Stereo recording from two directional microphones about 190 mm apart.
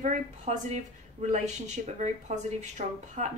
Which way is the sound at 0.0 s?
40° right (ahead or behind).